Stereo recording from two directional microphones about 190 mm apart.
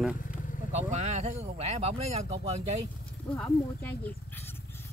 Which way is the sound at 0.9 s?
35° right (ahead or behind).